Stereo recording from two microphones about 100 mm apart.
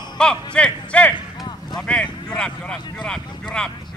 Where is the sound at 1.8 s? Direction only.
10° left (ahead or behind).